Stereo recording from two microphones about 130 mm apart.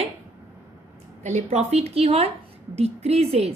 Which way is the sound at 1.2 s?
60° right (ahead or behind).